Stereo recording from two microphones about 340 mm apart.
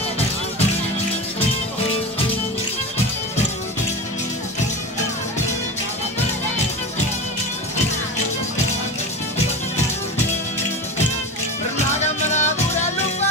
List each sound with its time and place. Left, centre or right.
12.3 s music: left